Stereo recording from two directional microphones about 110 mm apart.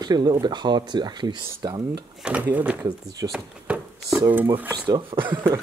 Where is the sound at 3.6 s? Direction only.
10° right (ahead or behind).